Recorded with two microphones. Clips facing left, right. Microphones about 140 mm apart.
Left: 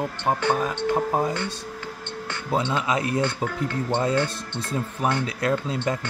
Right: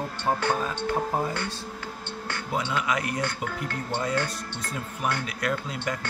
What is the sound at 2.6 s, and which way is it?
Speech, 25° left (ahead or behind).